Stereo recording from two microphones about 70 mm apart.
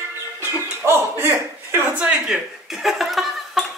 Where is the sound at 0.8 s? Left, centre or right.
Right.